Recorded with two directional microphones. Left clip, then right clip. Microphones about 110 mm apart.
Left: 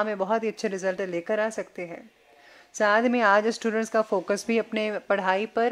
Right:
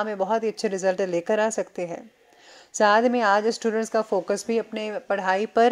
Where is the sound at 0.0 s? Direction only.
5° right (ahead or behind).